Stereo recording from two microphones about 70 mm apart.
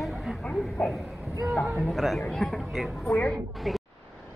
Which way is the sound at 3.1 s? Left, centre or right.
Centre.